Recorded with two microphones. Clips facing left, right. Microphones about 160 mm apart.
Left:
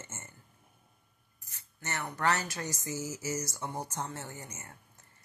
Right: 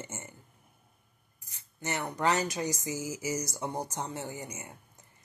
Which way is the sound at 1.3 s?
15° right (ahead or behind).